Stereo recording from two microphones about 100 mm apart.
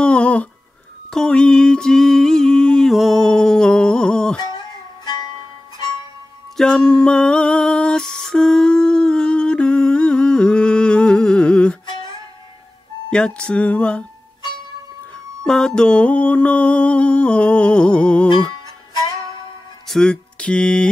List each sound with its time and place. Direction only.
0.0 s a sound: 10° left (ahead or behind)
4.4 s music: 45° left (ahead or behind)
6.5 s music: 5° left (ahead or behind)
13.1 s mantra: 10° left (ahead or behind)
15.4 s mantra: 5° left (ahead or behind)
19.9 s a sound: 5° left (ahead or behind)